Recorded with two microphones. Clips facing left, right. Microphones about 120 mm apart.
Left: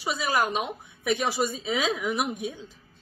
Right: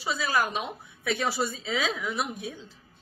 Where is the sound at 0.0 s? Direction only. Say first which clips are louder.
Left 1 dB; 15° left (ahead or behind).